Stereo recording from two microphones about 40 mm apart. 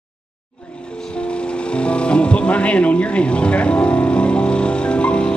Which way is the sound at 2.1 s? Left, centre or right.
Left.